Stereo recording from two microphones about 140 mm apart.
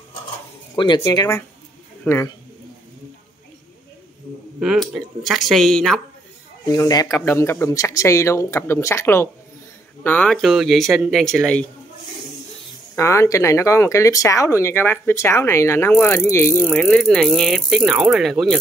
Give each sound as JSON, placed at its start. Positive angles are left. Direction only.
{"t": 0.7, "sound": "a man's voice", "side_deg": 30}
{"t": 4.6, "sound": "speech", "side_deg": 0}
{"t": 6.7, "sound": "speech", "side_deg": 25}
{"t": 12.9, "sound": "speech", "side_deg": 20}